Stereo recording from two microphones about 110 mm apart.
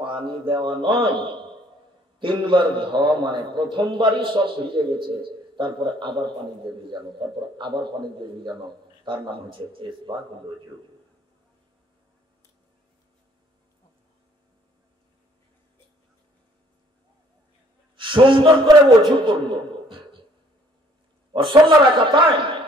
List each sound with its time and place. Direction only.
0.3 s a man's voice: 50° right (ahead or behind)
17.9 s a man's voice: 50° right (ahead or behind)
21.3 s a man's voice: 50° right (ahead or behind)